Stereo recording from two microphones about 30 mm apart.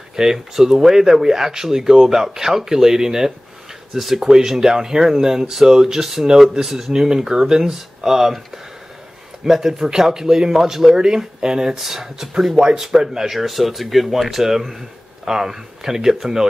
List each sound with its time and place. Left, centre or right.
0.1 s speech: centre
9.5 s speech: centre
13.3 s speech: centre